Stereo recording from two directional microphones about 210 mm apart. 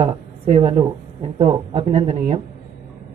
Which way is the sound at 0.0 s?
30° right (ahead or behind).